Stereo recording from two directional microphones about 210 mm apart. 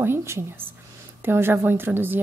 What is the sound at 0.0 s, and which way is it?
A woman's voice, 10° right (ahead or behind).